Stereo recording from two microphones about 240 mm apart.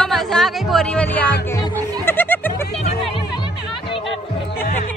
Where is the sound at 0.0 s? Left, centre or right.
Centre.